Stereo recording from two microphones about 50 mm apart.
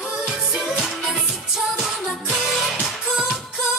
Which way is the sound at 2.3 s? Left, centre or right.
Centre.